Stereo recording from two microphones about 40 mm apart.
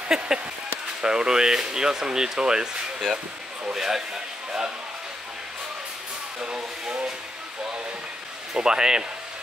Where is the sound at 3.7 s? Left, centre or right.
Centre.